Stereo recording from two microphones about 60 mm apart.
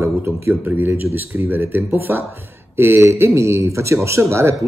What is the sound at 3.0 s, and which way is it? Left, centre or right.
Speech, right.